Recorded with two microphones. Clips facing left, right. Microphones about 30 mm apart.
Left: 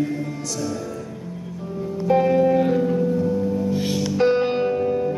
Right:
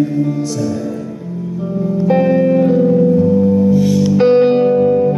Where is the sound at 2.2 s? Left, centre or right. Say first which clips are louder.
Right 4 dB; centre.